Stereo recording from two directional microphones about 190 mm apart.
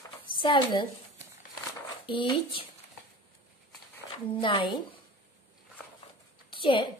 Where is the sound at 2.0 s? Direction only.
25° left (ahead or behind).